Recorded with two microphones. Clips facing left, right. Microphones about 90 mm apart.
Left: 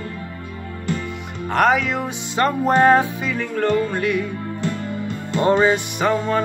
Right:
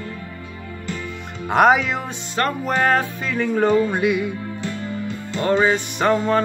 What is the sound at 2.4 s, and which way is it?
Music, 30° left (ahead or behind).